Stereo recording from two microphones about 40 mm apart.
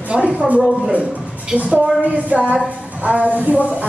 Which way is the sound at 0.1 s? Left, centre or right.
Right.